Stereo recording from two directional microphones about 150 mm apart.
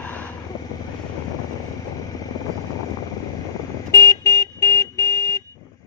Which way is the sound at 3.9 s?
20° left (ahead or behind).